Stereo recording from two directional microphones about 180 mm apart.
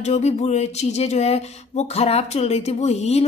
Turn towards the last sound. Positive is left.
turn(degrees=35)  # may be behind; listen again after turning